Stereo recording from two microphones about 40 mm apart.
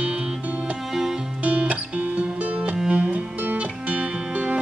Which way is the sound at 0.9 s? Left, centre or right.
Centre.